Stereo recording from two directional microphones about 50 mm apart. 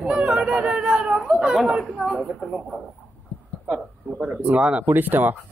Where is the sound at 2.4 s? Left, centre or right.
Centre.